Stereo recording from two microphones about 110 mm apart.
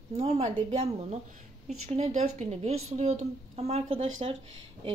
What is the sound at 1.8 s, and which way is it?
A woman's voice, 90° right.